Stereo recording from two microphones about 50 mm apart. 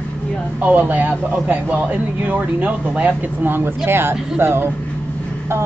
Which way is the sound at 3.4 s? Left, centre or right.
Right.